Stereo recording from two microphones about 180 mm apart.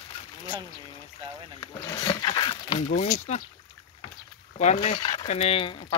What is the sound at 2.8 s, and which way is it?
Speech, 45° left (ahead or behind).